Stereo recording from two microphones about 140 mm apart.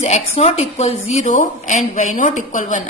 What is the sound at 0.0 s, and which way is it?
A woman's voice, 50° left (ahead or behind).